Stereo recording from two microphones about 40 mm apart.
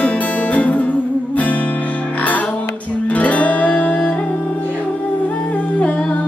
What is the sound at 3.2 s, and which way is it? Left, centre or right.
Music, left.